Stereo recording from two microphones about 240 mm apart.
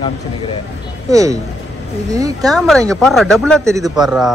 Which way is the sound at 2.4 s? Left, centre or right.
Centre.